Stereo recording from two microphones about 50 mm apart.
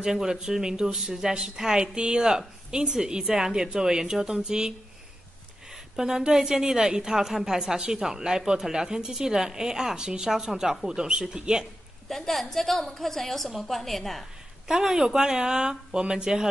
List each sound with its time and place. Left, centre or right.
0.0 s a woman's voice: centre
12.1 s a woman's voice: centre
14.7 s a woman's voice: centre